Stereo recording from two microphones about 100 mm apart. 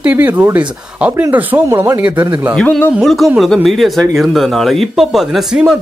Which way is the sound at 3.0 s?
Centre (ahead or behind).